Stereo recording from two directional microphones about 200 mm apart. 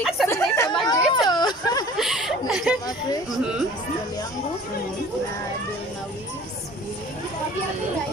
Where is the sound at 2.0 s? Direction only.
Centre (ahead or behind).